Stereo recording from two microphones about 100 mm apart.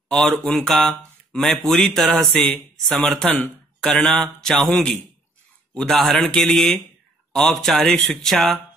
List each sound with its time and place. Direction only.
0.1 s speech: 5° left (ahead or behind)